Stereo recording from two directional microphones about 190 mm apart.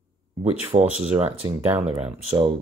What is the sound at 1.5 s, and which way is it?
Speech, 10° right (ahead or behind).